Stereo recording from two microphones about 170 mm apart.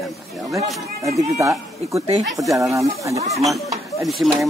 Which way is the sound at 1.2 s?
15° right (ahead or behind).